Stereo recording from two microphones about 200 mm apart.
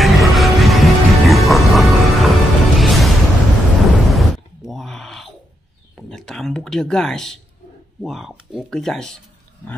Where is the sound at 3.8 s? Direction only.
Centre (ahead or behind).